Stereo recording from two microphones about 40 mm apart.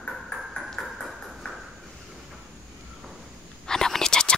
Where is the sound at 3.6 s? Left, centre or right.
Centre.